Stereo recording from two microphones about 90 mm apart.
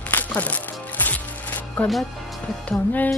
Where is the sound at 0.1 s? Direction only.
20° left (ahead or behind).